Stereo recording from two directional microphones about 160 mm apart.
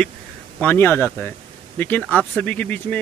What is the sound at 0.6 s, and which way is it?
Speech, 10° left (ahead or behind).